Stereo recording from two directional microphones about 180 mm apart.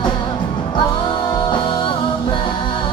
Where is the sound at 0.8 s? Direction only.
30° left (ahead or behind).